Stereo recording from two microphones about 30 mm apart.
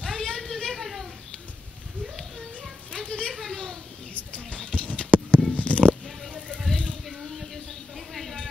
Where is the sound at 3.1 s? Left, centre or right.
Left.